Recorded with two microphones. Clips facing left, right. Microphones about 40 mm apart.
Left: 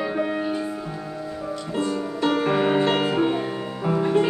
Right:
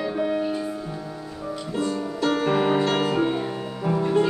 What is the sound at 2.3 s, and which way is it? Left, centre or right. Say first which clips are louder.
Music: even; centre.